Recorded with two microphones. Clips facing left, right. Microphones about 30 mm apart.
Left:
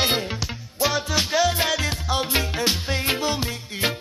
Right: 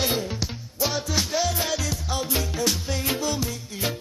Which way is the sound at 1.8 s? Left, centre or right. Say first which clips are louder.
Left 4 dB; left.